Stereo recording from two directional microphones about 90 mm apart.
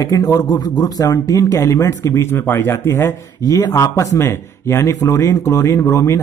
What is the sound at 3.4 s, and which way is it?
Speech, 40° left (ahead or behind).